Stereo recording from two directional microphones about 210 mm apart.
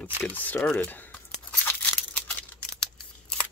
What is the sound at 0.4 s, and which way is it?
Speech, 10° left (ahead or behind).